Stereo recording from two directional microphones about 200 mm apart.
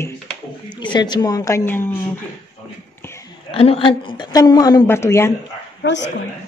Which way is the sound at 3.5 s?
30° left (ahead or behind).